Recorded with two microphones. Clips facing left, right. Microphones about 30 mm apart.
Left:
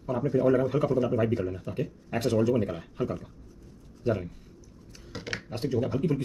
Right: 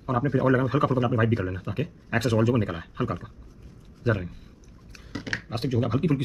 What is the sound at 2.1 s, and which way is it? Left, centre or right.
Speech, right.